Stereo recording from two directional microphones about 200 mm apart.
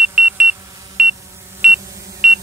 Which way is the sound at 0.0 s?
5° right (ahead or behind).